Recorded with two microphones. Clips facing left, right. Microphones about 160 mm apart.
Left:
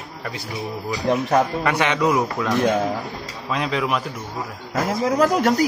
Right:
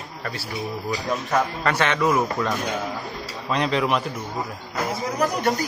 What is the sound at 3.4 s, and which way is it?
Speech, centre (ahead or behind).